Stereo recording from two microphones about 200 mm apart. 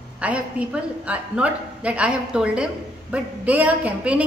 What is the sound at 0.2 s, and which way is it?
A woman's voice, 5° right (ahead or behind).